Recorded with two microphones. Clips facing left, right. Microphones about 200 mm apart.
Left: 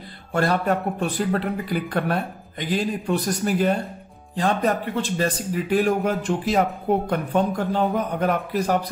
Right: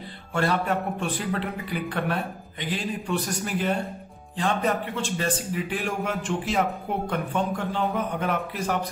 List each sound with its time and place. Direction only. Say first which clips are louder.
0.3 s a man's voice: left 3 dB; 40° left (ahead or behind)